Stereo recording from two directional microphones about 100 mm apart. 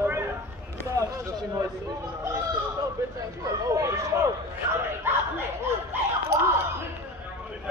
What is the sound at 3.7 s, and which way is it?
Speech, 30° right (ahead or behind).